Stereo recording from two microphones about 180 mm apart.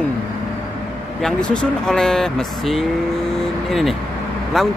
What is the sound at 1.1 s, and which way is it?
Speech, 5° left (ahead or behind).